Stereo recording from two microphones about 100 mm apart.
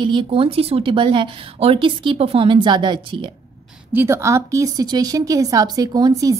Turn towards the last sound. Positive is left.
turn(degrees=-40)  # may be behind; listen again after turning